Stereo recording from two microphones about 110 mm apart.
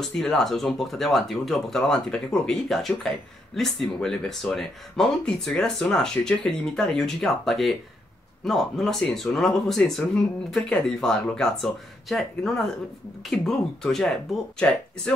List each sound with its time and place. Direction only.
0.0 s speech: 5° left (ahead or behind)